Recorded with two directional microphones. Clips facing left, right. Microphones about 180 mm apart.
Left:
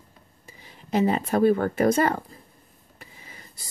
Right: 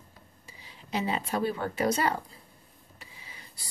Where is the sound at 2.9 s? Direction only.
50° left (ahead or behind).